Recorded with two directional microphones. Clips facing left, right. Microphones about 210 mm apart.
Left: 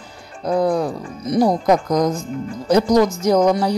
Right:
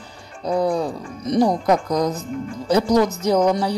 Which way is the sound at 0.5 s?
10° right (ahead or behind).